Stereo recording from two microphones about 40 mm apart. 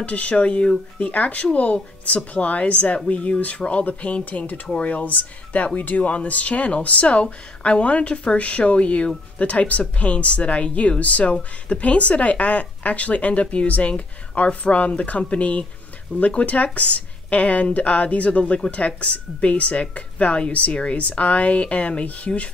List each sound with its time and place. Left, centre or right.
0.0 s speech: left